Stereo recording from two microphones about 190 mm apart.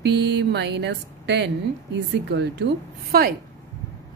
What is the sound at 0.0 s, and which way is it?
Speech, 60° right (ahead or behind).